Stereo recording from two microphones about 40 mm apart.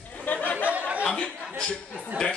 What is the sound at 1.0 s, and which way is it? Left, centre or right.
Speech, left.